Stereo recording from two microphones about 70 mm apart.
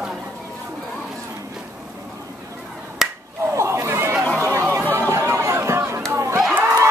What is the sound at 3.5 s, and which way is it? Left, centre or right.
Chatter, right.